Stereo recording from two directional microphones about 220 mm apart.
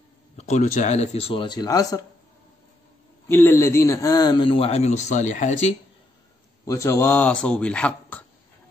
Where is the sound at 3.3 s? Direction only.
10° left (ahead or behind); by 5.7 s 35° left (ahead or behind).